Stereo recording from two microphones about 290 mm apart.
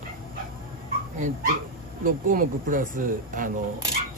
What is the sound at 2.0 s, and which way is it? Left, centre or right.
Speech, right.